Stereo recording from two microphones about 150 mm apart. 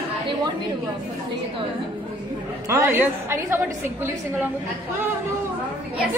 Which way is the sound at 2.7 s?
20° right (ahead or behind).